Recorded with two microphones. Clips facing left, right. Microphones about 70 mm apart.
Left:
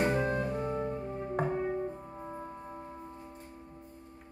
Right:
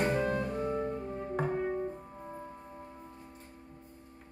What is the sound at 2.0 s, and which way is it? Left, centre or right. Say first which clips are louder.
Music: left 2 dB; centre.